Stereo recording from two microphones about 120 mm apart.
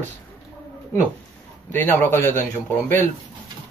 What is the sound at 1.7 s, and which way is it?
Speech, 15° left (ahead or behind).